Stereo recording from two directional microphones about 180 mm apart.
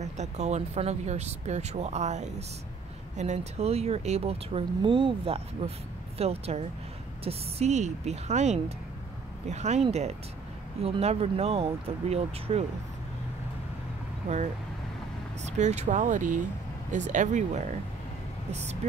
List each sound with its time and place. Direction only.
0.0 s speech: 40° right (ahead or behind)
15.4 s speech: 40° right (ahead or behind)